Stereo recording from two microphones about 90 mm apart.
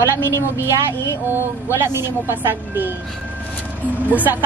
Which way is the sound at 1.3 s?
25° right (ahead or behind).